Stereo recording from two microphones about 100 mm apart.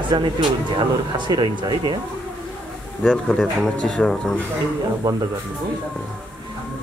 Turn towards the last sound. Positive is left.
turn(degrees=-40)  # may be behind; listen again after turning